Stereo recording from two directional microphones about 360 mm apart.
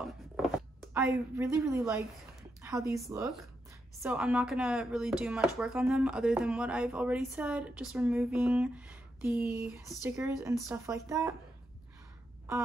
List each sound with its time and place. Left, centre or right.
0.0 s speech: centre